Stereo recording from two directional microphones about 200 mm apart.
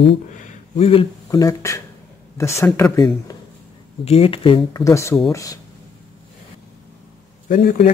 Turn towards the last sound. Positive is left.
turn(degrees=45)  # may be behind; listen again after turning